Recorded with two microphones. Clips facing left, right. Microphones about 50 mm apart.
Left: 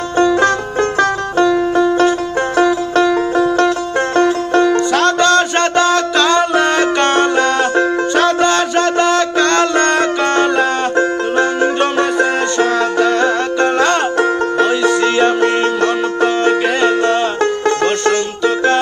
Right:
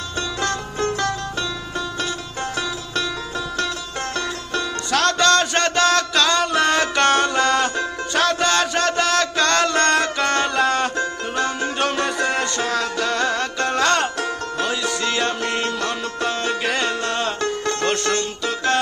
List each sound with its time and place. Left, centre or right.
0.2 s music: left
4.9 s music: centre
11.0 s music: left
14.1 s music: left
14.7 s music: centre
15.6 s music: left
16.6 s music: centre